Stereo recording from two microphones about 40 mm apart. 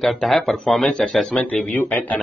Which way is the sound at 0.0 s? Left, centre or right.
Centre.